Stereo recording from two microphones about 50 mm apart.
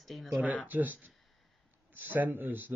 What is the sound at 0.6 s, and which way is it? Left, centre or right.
Speech, right.